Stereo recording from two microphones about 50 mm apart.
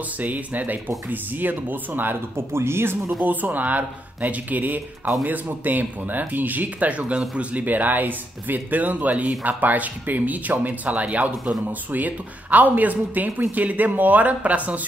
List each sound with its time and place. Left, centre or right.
0.2 s speech: right
2.3 s speech: right
3.2 s speech: right
7.6 s speech: right